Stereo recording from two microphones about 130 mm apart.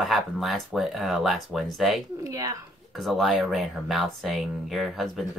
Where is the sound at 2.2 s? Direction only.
25° right (ahead or behind).